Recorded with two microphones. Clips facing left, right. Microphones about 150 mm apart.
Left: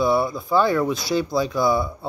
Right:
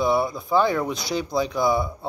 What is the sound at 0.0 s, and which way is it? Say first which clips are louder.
Speech: left 2 dB; 20° right (ahead or behind).